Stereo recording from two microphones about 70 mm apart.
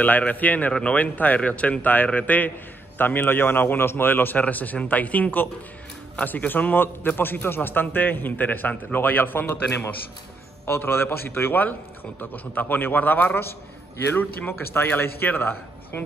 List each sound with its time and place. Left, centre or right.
0.0 s a man's voice: left
14.7 s speech: left